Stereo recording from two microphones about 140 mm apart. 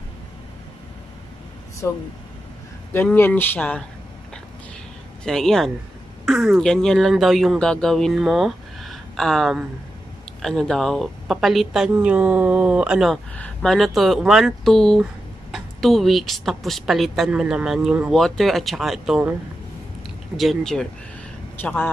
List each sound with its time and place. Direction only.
1.8 s speech: 20° left (ahead or behind)
5.2 s speech: 5° left (ahead or behind)
20.3 s speech: centre (ahead or behind)
21.5 s speech: 15° left (ahead or behind)